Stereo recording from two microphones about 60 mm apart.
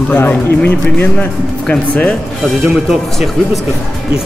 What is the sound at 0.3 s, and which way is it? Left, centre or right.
Speech, left.